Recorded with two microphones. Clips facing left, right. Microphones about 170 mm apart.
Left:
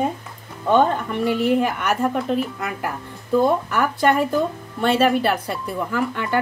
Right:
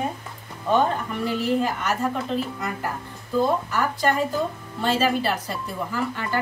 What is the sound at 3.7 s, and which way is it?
Speech, 60° left (ahead or behind).